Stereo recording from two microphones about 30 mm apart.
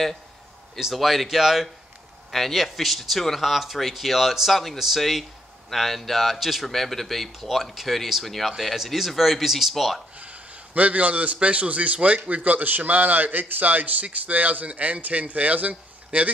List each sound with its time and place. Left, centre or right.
0.9 s speech: centre
5.7 s speech: centre
6.6 s speech: centre
7.3 s speech: centre
8.7 s speech: centre
10.1 s a sound: right
11.4 s a man's voice: right
14.1 s speech: right
15.0 s speech: right